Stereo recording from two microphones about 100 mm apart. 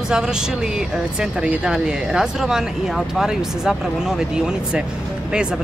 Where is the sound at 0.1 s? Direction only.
5° right (ahead or behind).